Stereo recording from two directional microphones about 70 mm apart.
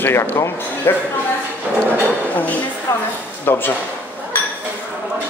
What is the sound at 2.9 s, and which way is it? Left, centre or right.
Speech, left.